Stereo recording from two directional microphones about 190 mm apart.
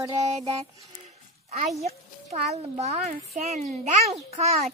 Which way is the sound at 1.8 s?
35° right (ahead or behind).